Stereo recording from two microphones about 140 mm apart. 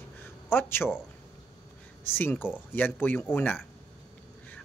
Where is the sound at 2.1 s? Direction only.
15° left (ahead or behind).